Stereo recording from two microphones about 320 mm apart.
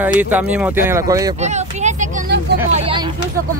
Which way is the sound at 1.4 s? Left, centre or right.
Right.